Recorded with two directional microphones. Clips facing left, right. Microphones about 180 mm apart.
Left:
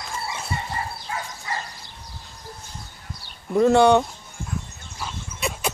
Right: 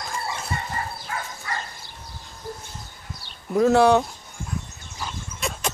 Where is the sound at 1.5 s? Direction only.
20° left (ahead or behind).